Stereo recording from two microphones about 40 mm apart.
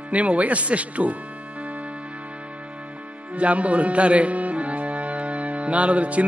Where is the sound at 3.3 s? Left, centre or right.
Right.